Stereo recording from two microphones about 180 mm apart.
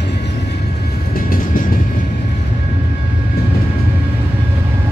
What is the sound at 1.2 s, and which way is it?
Train, 50° left (ahead or behind).